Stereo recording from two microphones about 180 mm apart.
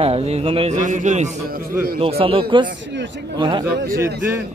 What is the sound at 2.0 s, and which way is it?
Speech, 30° right (ahead or behind).